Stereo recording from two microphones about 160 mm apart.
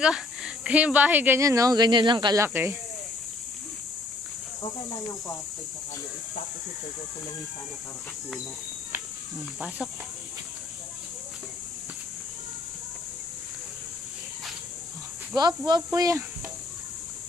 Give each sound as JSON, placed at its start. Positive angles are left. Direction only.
{"t": 0.0, "sound": "speech", "side_deg": -5}
{"t": 2.4, "sound": "speech", "side_deg": -15}
{"t": 15.3, "sound": "speech", "side_deg": -25}